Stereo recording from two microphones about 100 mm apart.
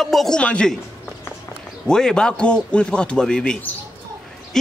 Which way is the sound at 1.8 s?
5° left (ahead or behind).